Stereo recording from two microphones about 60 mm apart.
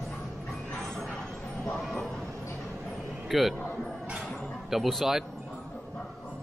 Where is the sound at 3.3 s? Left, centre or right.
Centre.